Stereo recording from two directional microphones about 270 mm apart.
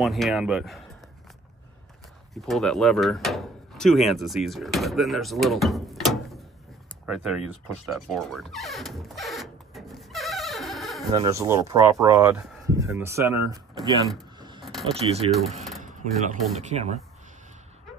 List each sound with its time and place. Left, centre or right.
0.0 s speech: centre
2.3 s speech: centre
7.1 s music: centre
11.1 s speech: centre
14.6 s a sound: centre
15.0 s speech: right
15.8 s a sound: right
16.5 s speech: right